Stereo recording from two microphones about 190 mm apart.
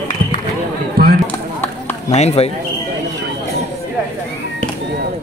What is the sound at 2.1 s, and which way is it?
Run, 35° left (ahead or behind).